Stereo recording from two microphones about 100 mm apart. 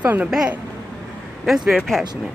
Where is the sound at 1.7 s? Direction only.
Centre (ahead or behind).